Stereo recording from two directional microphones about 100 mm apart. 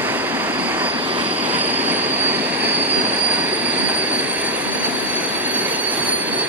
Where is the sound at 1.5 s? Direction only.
15° right (ahead or behind).